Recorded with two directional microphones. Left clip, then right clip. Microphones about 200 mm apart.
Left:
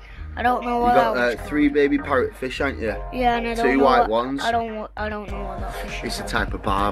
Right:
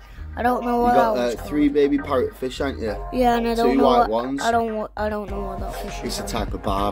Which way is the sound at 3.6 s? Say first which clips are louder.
Left 1 dB; 10° right (ahead or behind).